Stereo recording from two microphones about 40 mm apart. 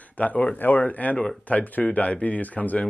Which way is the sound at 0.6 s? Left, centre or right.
Left.